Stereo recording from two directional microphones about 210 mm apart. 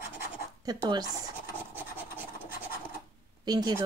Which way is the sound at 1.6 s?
10° right (ahead or behind).